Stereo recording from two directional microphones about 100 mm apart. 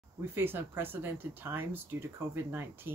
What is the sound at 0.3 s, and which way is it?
Speech, 20° right (ahead or behind).